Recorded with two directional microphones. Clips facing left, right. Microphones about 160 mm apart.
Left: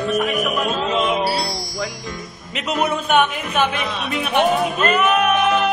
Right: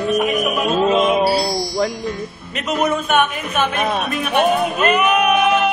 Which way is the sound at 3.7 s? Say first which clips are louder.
Right 5 dB; 50° right (ahead or behind).